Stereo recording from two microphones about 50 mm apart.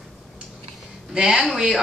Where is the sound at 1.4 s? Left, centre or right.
Centre.